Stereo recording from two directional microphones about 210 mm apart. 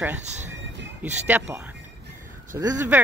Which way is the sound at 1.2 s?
10° right (ahead or behind).